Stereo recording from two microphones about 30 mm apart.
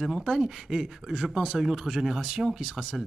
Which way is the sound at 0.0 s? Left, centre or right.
Centre.